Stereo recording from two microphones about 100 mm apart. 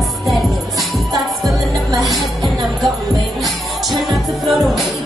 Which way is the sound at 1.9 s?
35° right (ahead or behind).